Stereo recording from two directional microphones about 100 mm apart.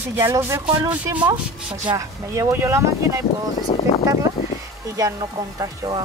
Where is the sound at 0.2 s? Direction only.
30° right (ahead or behind).